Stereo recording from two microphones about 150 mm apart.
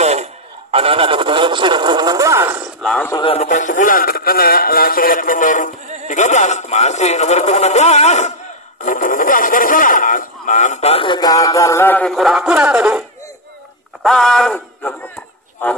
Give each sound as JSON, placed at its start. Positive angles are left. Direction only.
{"t": 0.0, "sound": "speech", "side_deg": -45}
{"t": 2.8, "sound": "speech", "side_deg": 5}
{"t": 3.4, "sound": "a man's voice", "side_deg": 55}
{"t": 8.8, "sound": "speech", "side_deg": 60}
{"t": 12.1, "sound": "speech", "side_deg": 0}
{"t": 14.0, "sound": "speech", "side_deg": 0}